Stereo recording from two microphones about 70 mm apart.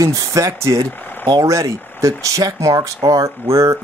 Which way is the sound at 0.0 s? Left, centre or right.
Right.